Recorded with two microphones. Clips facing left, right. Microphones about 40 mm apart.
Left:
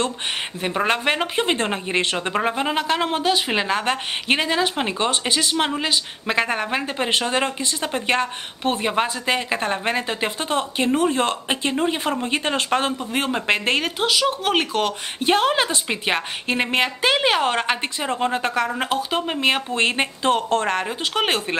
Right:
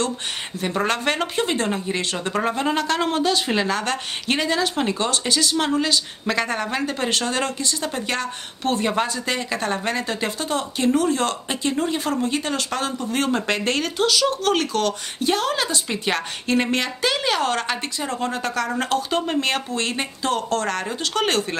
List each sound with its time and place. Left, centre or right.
0.6 s speech: left
18.8 s speech: centre
19.7 s speech: left